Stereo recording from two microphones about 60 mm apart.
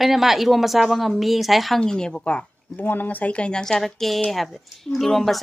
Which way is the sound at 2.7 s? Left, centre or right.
Left.